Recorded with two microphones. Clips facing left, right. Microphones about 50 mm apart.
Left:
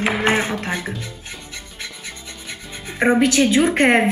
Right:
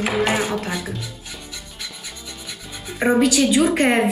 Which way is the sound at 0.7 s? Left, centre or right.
Left.